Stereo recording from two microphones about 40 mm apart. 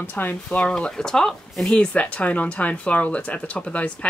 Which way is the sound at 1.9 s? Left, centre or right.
Left.